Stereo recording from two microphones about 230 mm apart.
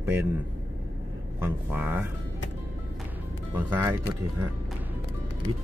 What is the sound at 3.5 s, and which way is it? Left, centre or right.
Speech, centre.